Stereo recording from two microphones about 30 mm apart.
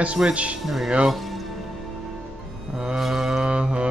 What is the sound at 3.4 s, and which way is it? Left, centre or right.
Music, right.